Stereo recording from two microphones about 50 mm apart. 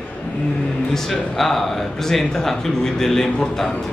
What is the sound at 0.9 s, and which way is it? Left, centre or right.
Speech, centre.